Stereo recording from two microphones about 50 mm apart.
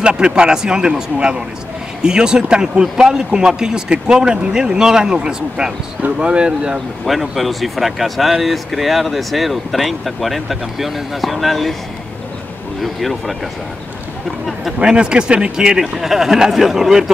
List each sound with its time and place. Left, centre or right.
0.0 s speech: centre
7.1 s speech: centre
12.8 s speech: centre
14.8 s speech: centre